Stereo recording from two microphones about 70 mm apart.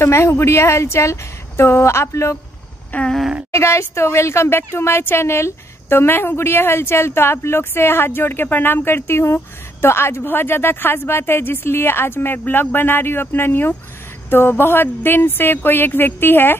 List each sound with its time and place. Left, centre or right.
0.0 s speech: left
2.9 s a sound: left
3.5 s speech: left